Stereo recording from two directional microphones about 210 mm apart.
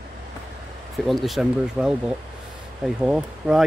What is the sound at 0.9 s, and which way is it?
Speech, centre (ahead or behind).